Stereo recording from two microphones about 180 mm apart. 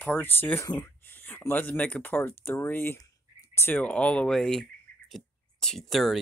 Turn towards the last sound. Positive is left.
turn(degrees=0)  # may be behind; listen again after turning